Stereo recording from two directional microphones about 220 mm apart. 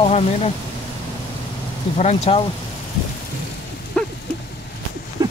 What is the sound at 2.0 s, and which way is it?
Speech, 25° left (ahead or behind).